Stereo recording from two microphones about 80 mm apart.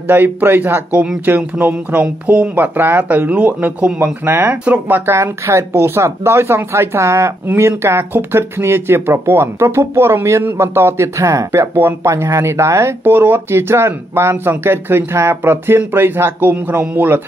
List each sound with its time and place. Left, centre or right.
0.1 s speech: right
13.0 s speech: right